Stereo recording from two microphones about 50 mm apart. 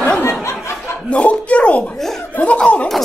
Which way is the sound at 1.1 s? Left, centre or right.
Left.